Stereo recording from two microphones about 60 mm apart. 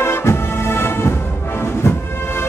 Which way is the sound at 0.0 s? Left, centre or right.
Left.